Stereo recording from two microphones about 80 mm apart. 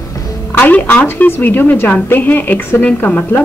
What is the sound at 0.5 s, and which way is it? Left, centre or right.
A woman's voice, left.